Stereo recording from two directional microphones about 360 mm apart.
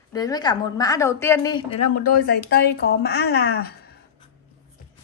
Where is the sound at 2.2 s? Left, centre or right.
Left.